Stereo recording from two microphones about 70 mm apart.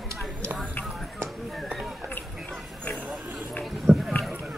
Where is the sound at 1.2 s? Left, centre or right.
Centre.